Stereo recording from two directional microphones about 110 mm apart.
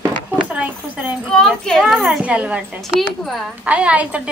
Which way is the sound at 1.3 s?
5° left (ahead or behind).